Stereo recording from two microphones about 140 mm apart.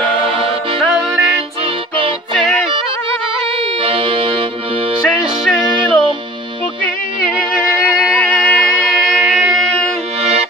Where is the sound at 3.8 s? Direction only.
35° right (ahead or behind).